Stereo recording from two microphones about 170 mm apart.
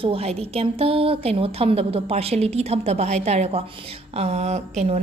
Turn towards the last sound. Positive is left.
turn(degrees=-40)  # may be behind; listen again after turning